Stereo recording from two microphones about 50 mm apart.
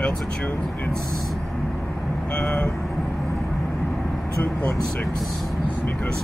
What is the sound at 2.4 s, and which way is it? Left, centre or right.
Speech, left.